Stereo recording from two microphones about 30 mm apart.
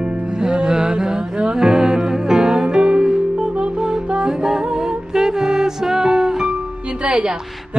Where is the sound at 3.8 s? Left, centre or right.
Right.